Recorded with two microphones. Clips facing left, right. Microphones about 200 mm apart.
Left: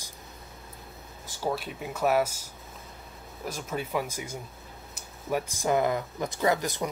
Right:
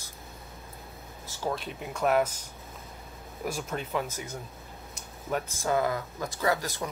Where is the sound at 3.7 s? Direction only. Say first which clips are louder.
Left 1 dB; 10° left (ahead or behind).